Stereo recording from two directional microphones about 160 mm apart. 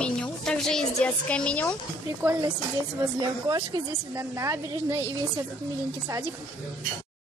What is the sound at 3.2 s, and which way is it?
A woman's voice, 25° right (ahead or behind).